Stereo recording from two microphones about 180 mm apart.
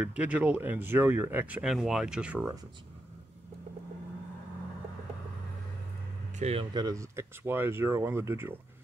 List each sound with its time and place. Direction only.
0.0 s speech: 5° right (ahead or behind)
6.3 s speech: 35° right (ahead or behind)
6.7 s speech: 20° right (ahead or behind)